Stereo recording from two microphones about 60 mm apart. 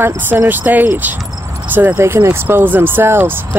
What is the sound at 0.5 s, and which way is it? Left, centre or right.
Speech, right.